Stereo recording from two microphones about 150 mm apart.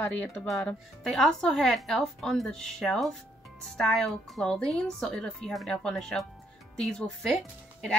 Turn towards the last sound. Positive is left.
turn(degrees=0)  # may be behind; listen again after turning